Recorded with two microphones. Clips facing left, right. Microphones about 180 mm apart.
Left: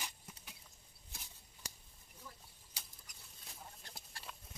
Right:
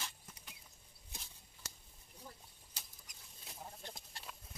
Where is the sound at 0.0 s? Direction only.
5° left (ahead or behind).